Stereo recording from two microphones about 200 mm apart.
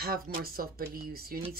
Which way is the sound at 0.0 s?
50° right (ahead or behind).